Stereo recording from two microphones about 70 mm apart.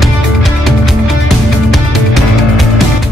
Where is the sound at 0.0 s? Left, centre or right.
Centre.